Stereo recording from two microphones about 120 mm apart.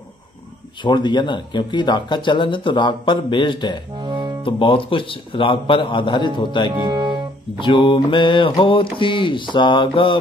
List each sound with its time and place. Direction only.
0.8 s speech: 40° left (ahead or behind)
3.9 s music: 40° right (ahead or behind)
4.5 s mantra: 45° left (ahead or behind)
6.7 s speech: 40° right (ahead or behind)
7.6 s mantra: 45° left (ahead or behind)